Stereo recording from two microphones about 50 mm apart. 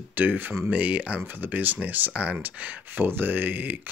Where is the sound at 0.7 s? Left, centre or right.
Right.